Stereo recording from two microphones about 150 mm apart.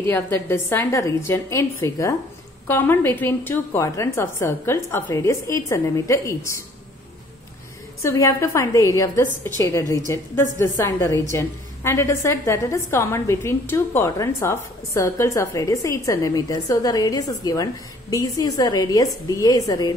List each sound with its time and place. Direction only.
0.0 s a woman's voice: 15° left (ahead or behind)
8.0 s a woman's voice: 20° left (ahead or behind)